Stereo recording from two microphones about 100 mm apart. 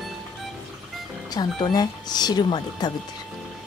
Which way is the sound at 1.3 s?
40° left (ahead or behind).